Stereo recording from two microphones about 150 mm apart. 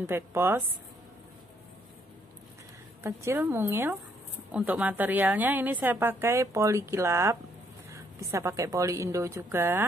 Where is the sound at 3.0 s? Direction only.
15° right (ahead or behind).